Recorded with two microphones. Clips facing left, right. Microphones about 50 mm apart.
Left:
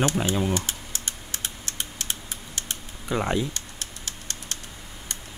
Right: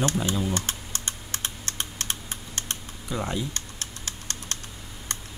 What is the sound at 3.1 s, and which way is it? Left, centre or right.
Speech, left.